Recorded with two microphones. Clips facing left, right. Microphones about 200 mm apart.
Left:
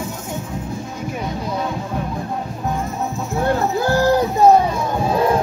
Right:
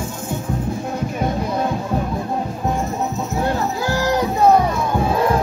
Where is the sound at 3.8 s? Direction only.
55° left (ahead or behind).